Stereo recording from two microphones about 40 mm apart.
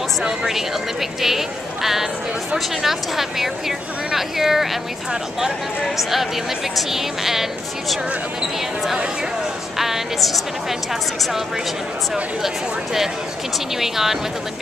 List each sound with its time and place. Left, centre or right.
1.2 s a woman's voice: centre
6.9 s a woman's voice: centre
9.8 s a woman's voice: centre
13.7 s a woman's voice: centre